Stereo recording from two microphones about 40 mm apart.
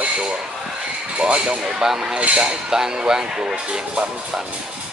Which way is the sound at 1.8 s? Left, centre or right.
Centre.